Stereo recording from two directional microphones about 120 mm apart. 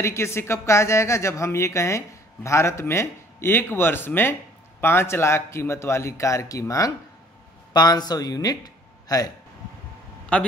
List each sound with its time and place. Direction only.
0.0 s speech: 20° left (ahead or behind)
10.3 s a man's voice: 10° left (ahead or behind)